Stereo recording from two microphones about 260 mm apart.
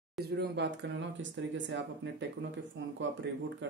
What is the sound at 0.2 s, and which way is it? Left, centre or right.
Speech, right.